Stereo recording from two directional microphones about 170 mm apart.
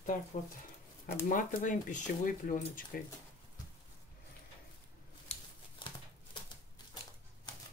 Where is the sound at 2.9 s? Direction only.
60° left (ahead or behind).